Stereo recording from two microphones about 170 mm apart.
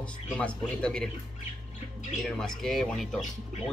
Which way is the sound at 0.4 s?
5° left (ahead or behind).